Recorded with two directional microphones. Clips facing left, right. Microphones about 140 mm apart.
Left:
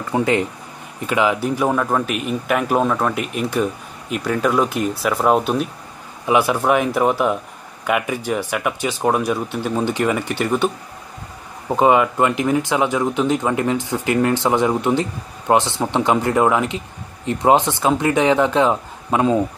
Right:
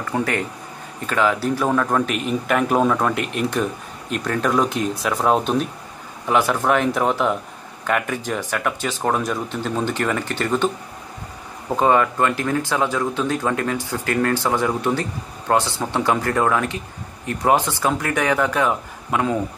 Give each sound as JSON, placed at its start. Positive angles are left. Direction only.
{"t": 0.1, "sound": "a man's voice", "side_deg": 20}
{"t": 11.7, "sound": "speech", "side_deg": 15}